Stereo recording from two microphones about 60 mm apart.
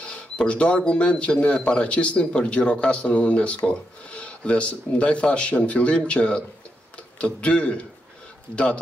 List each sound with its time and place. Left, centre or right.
0.0 s speech: centre